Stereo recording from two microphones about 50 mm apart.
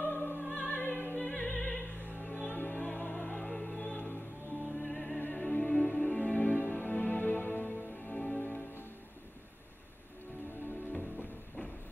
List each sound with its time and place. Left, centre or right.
0.0 s opera: left
1.2 s opera: left
3.3 s music: centre
3.8 s music: left
4.8 s music: centre
5.3 s music: left
8.1 s music: left
10.9 s music: left